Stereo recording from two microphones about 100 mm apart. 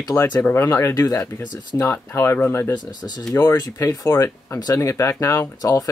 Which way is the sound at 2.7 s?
45° left (ahead or behind).